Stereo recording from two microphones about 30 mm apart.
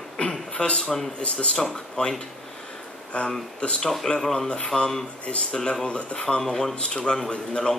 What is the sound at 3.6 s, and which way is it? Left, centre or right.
Speech, left.